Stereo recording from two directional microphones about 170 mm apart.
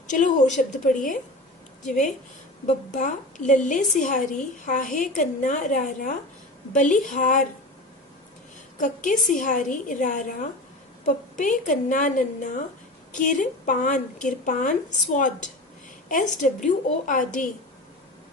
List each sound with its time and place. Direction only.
0.0 s a woman's voice: 45° left (ahead or behind)
2.6 s a woman's voice: 45° left (ahead or behind)
8.7 s a woman's voice: 50° left (ahead or behind)